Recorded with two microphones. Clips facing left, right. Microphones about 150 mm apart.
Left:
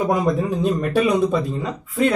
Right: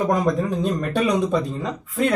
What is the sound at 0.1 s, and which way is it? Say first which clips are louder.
Speech: left 1 dB; 5° left (ahead or behind).